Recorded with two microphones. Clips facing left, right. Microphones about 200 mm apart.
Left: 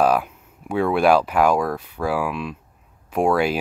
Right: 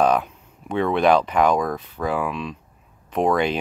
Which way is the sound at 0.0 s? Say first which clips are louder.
Even; 5° left (ahead or behind).